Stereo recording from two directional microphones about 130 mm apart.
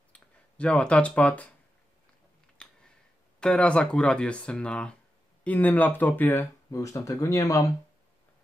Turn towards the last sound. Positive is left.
turn(degrees=25)  # may be behind; listen again after turning